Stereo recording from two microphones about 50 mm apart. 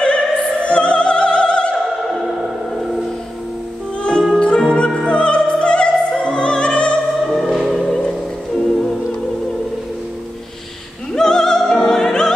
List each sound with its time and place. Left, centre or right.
0.0 s opera: left
2.0 s music: centre
4.0 s music: centre
7.3 s music: centre
11.1 s music: centre